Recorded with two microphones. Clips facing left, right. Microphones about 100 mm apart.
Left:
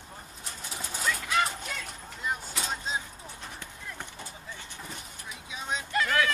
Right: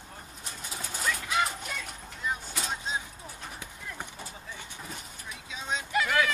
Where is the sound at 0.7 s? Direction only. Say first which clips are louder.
Left 1 dB; 5° right (ahead or behind).